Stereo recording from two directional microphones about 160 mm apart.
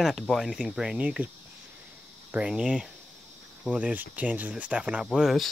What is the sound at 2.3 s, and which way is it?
Speech, 5° right (ahead or behind).